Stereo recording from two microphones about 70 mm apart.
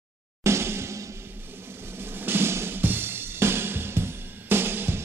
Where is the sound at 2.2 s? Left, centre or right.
Right.